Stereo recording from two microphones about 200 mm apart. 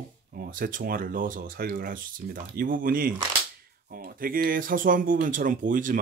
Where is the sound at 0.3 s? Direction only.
45° right (ahead or behind).